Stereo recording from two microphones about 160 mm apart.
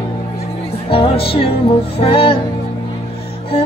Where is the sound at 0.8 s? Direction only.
35° left (ahead or behind).